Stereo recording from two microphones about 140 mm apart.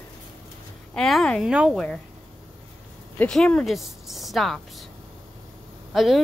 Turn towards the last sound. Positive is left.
turn(degrees=0)  # may be behind; listen again after turning